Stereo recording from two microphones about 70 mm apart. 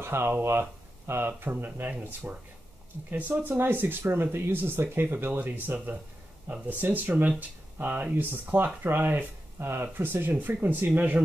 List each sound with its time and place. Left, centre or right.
0.0 s speech: right